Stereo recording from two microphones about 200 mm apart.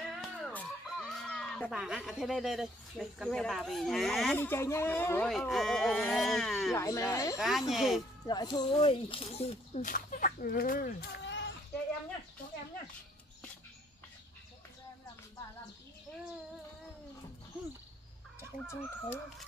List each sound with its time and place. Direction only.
0.1 s speech: centre (ahead or behind)
4.5 s speech: 10° left (ahead or behind)
6.7 s speech: 15° left (ahead or behind)
7.3 s speech: centre (ahead or behind)
8.3 s speech: 20° left (ahead or behind); by 11.5 s 60° left (ahead or behind)
18.7 s speech: 10° left (ahead or behind)